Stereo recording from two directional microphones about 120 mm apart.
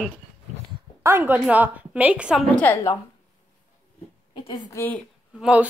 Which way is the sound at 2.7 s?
15° left (ahead or behind).